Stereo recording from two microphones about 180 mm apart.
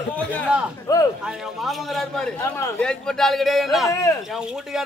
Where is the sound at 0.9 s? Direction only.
20° left (ahead or behind).